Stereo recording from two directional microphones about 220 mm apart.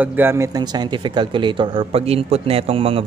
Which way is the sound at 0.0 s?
10° right (ahead or behind).